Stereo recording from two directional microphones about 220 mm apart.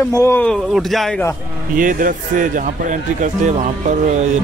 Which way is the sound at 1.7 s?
40° right (ahead or behind).